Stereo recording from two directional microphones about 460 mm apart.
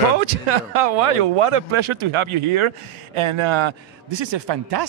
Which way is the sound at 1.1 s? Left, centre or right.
Right.